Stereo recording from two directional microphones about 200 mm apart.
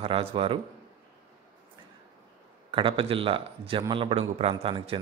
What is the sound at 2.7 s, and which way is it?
A man's voice, 25° right (ahead or behind).